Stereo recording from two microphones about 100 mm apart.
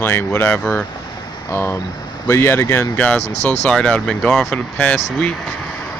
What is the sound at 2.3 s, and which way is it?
Speech, 25° left (ahead or behind).